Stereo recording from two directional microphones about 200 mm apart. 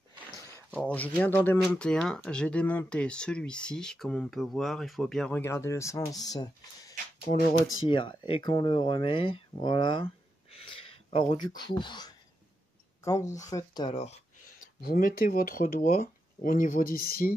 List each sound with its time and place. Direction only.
0.8 s speech: 10° left (ahead or behind)
7.3 s speech: 40° left (ahead or behind)
7.9 s speech: 25° left (ahead or behind)
13.9 s speech: 35° left (ahead or behind)
14.8 s speech: 45° left (ahead or behind)